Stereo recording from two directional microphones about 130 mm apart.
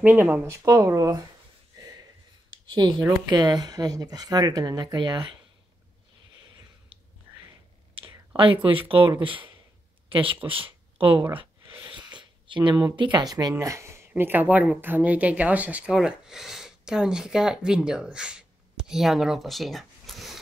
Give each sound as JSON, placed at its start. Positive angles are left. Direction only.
{"t": 0.0, "sound": "speech", "side_deg": -15}
{"t": 2.7, "sound": "speech", "side_deg": -35}
{"t": 8.0, "sound": "whispering", "side_deg": -20}
{"t": 8.6, "sound": "speech", "side_deg": -45}